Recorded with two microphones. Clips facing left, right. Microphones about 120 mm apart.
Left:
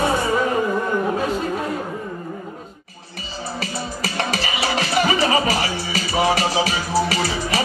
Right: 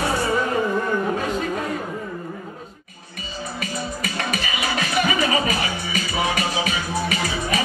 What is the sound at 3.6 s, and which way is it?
Music, 30° left (ahead or behind).